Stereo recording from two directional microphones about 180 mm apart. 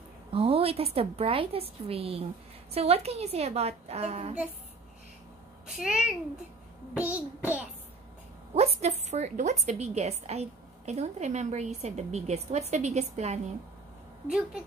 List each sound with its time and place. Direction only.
0.3 s a woman's voice: 30° right (ahead or behind)
5.8 s a child's voice: 5° right (ahead or behind)
7.0 s child singing: 10° right (ahead or behind)
8.5 s a woman's voice: 40° right (ahead or behind)
14.2 s a child's voice: 5° right (ahead or behind)